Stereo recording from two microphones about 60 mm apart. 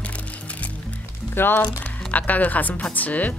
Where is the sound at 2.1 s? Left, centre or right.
Left.